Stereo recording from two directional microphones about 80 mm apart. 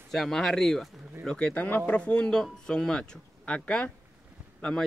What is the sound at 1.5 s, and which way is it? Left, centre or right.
Speech, left.